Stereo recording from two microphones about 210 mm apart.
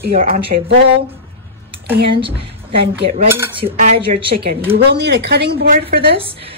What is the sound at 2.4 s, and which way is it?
Speech, 25° right (ahead or behind).